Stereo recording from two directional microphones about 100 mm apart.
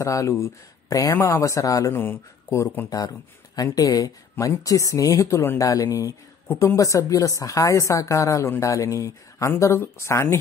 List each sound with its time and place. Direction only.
0.0 s a woman's voice: 30° left (ahead or behind)
3.7 s a woman's voice: 40° left (ahead or behind)
6.4 s a woman's voice: 20° left (ahead or behind)
6.7 s a woman's voice: 35° left (ahead or behind)